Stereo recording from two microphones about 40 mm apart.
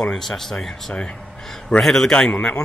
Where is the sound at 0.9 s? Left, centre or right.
Left.